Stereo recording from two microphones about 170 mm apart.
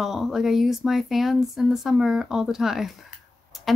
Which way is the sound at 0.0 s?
Centre (ahead or behind).